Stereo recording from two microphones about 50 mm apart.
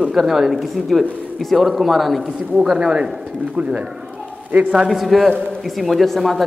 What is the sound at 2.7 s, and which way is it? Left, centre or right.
Speech, centre.